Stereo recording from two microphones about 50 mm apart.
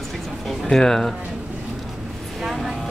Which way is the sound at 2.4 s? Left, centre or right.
Centre.